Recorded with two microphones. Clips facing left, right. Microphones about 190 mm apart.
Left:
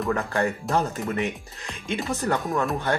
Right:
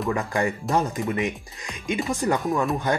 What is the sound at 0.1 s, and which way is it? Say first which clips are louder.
Speech: even; 15° right (ahead or behind).